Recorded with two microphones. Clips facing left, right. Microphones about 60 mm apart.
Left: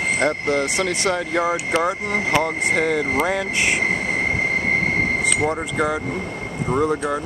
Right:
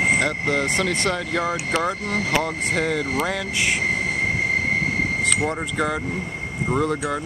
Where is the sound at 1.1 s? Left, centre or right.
Centre.